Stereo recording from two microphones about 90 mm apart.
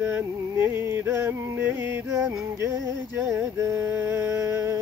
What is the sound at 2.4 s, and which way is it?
Music, 35° right (ahead or behind).